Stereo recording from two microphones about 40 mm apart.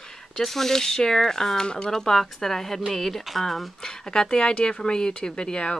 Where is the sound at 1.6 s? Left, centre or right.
Left.